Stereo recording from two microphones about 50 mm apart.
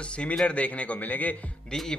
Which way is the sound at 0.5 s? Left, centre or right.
Left.